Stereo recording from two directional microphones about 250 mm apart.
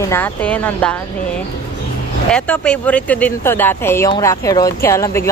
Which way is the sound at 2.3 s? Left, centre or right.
Centre.